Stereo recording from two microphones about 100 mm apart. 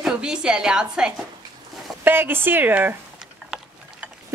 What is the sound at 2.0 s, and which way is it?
Speech, 20° right (ahead or behind).